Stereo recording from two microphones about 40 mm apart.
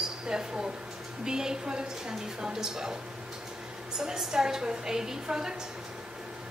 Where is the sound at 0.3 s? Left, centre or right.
Centre.